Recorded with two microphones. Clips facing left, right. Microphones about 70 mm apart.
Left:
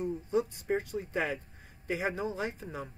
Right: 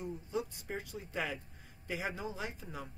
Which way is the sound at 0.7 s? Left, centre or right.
Left.